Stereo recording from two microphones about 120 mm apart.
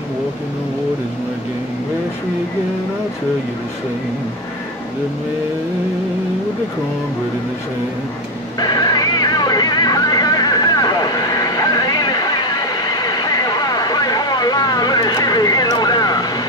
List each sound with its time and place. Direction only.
8.5 s music: 35° left (ahead or behind)